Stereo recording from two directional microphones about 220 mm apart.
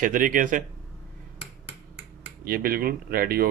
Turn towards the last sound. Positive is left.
turn(degrees=-45)  # may be behind; listen again after turning